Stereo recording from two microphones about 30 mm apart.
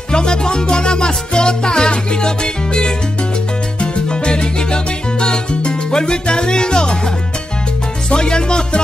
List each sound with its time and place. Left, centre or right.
0.1 s music: left
8.1 s music: left